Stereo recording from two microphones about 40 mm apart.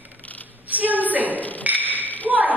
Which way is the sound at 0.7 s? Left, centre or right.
Right.